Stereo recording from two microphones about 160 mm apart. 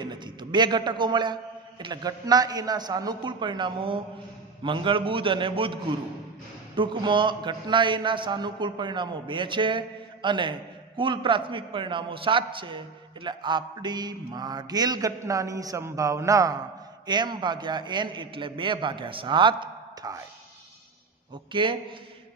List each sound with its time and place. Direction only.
0.0 s a man's voice: 30° right (ahead or behind)
21.5 s a man's voice: 30° right (ahead or behind)